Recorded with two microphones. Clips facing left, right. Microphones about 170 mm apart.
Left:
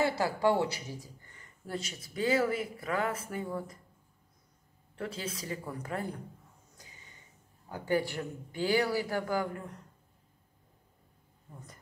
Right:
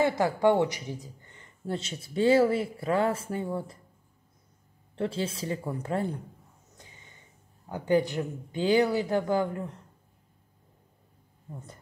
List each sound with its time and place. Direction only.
0.0 s speech: 20° right (ahead or behind)
4.9 s speech: 30° right (ahead or behind)
7.7 s speech: 20° right (ahead or behind)